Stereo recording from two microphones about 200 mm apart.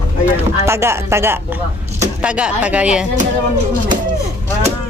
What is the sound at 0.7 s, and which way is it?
Speech, 15° right (ahead or behind).